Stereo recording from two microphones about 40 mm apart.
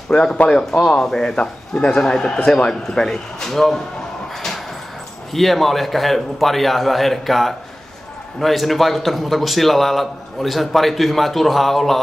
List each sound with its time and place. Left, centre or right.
0.1 s a man's voice: centre
5.3 s a man's voice: centre